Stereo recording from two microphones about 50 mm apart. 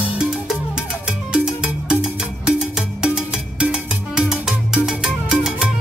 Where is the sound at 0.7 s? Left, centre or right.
Centre.